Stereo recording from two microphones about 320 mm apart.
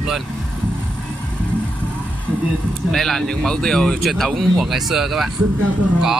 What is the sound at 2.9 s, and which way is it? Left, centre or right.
Speech, centre.